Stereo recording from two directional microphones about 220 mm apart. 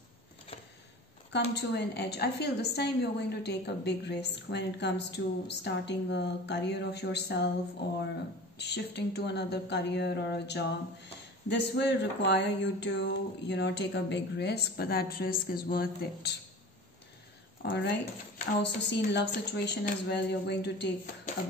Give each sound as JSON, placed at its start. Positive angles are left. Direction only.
{"t": 1.3, "sound": "a woman's voice", "side_deg": 50}
{"t": 8.5, "sound": "a woman's voice", "side_deg": 50}
{"t": 17.6, "sound": "a woman's voice", "side_deg": 50}